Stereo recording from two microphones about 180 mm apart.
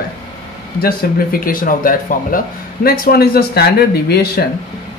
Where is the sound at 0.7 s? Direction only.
55° left (ahead or behind).